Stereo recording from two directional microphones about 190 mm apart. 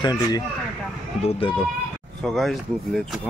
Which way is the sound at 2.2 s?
Centre (ahead or behind).